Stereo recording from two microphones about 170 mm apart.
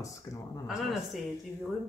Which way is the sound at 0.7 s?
Centre (ahead or behind).